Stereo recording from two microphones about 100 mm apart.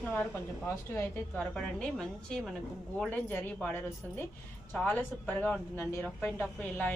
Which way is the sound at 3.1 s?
20° left (ahead or behind).